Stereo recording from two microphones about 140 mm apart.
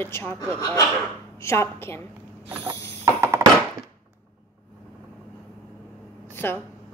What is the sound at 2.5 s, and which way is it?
Mechanisms, 15° right (ahead or behind).